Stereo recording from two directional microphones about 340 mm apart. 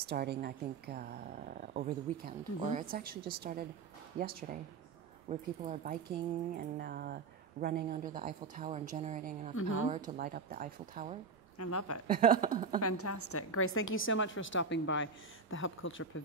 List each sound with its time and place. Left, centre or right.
0.1 s a woman's voice: right
9.6 s a woman's voice: left
9.8 s a woman's voice: right
11.5 s a woman's voice: left
12.1 s a woman's voice: right
12.8 s a woman's voice: left